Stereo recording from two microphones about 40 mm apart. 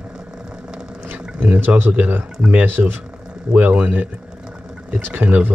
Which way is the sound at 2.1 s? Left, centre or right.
Right.